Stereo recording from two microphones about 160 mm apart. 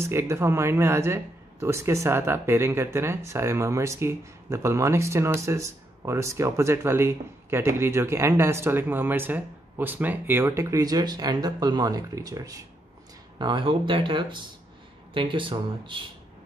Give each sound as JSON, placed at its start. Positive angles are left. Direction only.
{"t": 0.0, "sound": "speech", "side_deg": -15}